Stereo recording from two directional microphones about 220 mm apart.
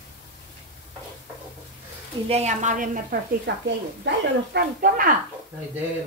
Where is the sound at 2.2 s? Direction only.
30° right (ahead or behind).